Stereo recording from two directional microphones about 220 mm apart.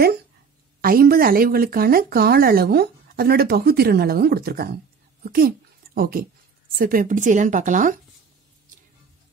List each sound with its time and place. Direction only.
0.7 s speech: 40° right (ahead or behind)